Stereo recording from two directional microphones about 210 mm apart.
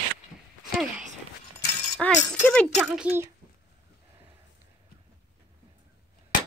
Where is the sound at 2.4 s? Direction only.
5° left (ahead or behind).